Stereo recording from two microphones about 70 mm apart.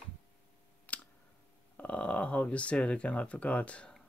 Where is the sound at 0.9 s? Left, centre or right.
Left.